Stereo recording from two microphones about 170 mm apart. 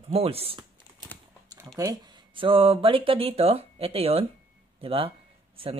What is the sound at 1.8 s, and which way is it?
Speech, 25° right (ahead or behind).